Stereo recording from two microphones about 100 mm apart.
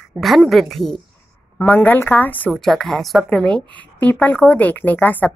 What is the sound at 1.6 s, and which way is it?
Speech, 15° left (ahead or behind).